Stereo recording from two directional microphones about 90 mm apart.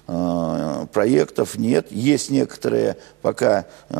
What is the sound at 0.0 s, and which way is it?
Speech, 35° left (ahead or behind).